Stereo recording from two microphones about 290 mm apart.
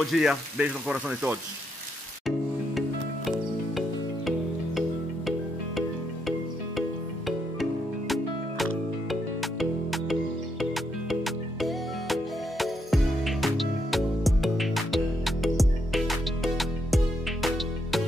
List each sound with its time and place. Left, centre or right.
0.0 s speech: centre
5.8 s music: centre
9.1 s music: centre